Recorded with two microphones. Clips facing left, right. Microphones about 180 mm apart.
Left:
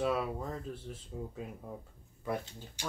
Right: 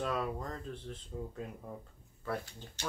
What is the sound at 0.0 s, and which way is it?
Speech, 5° left (ahead or behind).